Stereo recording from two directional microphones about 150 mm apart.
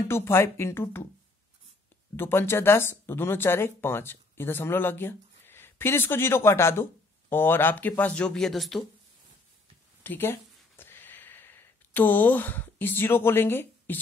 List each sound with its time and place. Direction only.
0.1 s speech: 15° left (ahead or behind)
2.1 s speech: 15° left (ahead or behind)
10.0 s a sound: 15° left (ahead or behind)